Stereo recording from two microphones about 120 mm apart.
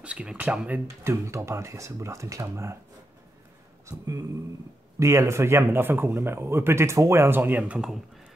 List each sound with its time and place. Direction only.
0.0 s speech: 10° right (ahead or behind)
3.8 s a sound: 25° right (ahead or behind)
4.9 s speech: 25° right (ahead or behind); by 8.0 s 5° right (ahead or behind)